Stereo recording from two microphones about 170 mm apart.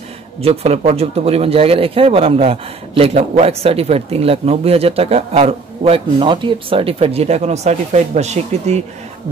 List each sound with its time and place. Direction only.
0.4 s speech: 35° right (ahead or behind)